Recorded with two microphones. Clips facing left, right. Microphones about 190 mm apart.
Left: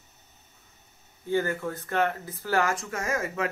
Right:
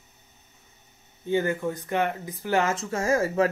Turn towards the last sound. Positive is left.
turn(degrees=-35)  # may be behind; listen again after turning